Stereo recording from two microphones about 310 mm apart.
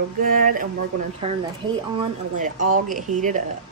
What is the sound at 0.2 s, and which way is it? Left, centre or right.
Speech, right.